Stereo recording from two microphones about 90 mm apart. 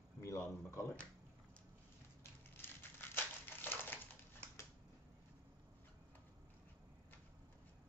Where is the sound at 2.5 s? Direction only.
25° left (ahead or behind).